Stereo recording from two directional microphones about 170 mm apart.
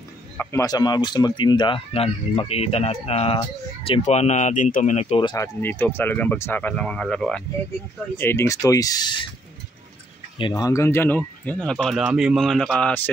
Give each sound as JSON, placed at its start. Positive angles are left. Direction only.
{"t": 0.4, "sound": "speech", "side_deg": 15}
{"t": 5.3, "sound": "speech", "side_deg": 15}
{"t": 8.2, "sound": "speech", "side_deg": 15}
{"t": 10.5, "sound": "speech", "side_deg": 20}